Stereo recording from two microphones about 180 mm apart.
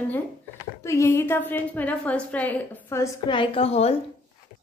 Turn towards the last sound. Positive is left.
turn(degrees=35)  # may be behind; listen again after turning